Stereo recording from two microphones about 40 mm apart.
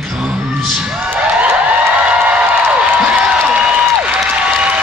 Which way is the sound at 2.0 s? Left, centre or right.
Right.